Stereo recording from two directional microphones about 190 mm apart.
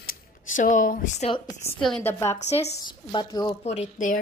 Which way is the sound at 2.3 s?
35° left (ahead or behind).